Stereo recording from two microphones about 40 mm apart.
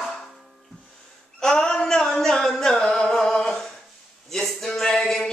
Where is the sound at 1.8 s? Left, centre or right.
Centre.